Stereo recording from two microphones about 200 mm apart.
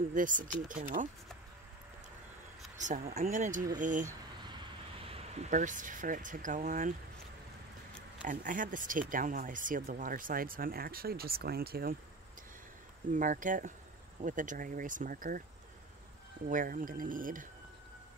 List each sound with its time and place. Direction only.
0.1 s speech: 40° right (ahead or behind)
2.8 s speech: 40° right (ahead or behind)
4.5 s speech: 25° right (ahead or behind)
8.3 s speech: 40° right (ahead or behind)
13.1 s speech: 40° right (ahead or behind)
16.4 s speech: 40° right (ahead or behind)